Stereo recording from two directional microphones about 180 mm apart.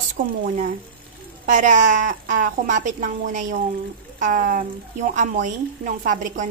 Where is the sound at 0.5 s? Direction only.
50° right (ahead or behind).